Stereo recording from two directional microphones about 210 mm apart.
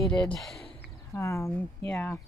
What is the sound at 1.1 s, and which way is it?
Speech, 15° left (ahead or behind).